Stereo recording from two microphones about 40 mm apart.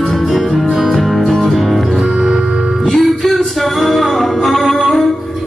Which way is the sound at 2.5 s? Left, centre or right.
Right.